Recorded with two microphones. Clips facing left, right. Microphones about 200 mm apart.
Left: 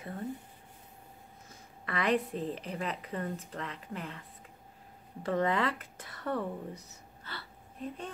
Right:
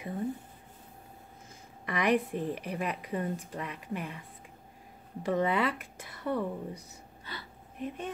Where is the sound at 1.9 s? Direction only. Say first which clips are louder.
Right 2 dB; 15° right (ahead or behind).